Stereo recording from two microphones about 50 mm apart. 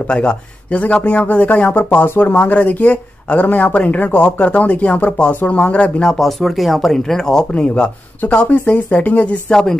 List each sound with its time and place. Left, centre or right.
0.1 s a man's voice: left
6.0 s speech: centre
7.5 s a man's voice: left
8.2 s speech: left
9.5 s speech: centre